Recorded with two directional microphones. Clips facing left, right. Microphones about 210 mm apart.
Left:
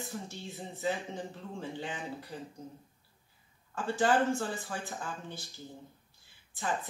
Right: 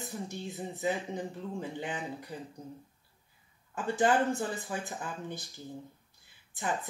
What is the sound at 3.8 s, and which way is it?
Speech, 20° right (ahead or behind).